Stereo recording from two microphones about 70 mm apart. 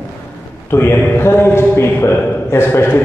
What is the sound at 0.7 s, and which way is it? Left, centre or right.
A man's voice, left.